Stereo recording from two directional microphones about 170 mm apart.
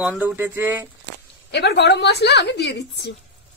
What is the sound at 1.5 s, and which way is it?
A woman's voice, 85° left.